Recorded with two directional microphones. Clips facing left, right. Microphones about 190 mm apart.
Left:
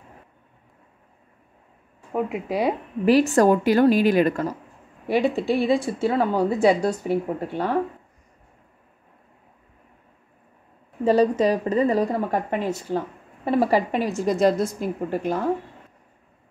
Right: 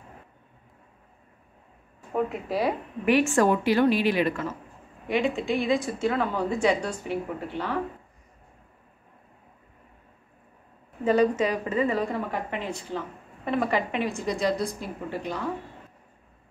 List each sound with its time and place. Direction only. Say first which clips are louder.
3.1 s a woman's voice: left 4 dB; 35° left (ahead or behind)
11.1 s a woman's voice: left 4 dB; 35° left (ahead or behind)